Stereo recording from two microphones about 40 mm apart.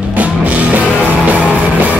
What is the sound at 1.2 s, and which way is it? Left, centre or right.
Music, right.